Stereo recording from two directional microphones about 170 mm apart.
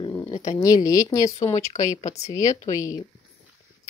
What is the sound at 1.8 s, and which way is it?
Speech, 45° left (ahead or behind).